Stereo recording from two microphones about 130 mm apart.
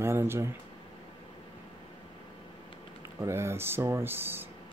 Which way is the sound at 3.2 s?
20° right (ahead or behind).